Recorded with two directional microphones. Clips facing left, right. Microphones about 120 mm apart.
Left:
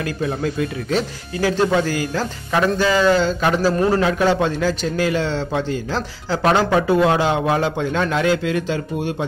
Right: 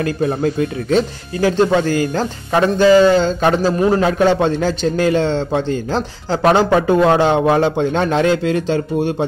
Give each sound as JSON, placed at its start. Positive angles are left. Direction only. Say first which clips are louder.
{"t": 0.0, "sound": "speech", "louder": "right 5 dB", "side_deg": -35}
{"t": 2.0, "sound": "speech", "louder": "right 5 dB", "side_deg": -30}
{"t": 3.6, "sound": "a man's voice", "louder": "right 2 dB", "side_deg": -20}
{"t": 4.6, "sound": "speech", "louder": "right 3 dB", "side_deg": -40}
{"t": 5.2, "sound": "a man's voice", "louder": "right 4 dB", "side_deg": -20}
{"t": 6.7, "sound": "a man's voice", "louder": "right 3 dB", "side_deg": -35}